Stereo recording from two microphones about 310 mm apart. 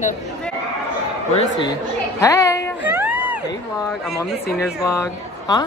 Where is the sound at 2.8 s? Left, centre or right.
Centre.